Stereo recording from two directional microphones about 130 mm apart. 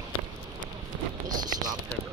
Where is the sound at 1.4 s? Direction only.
30° right (ahead or behind).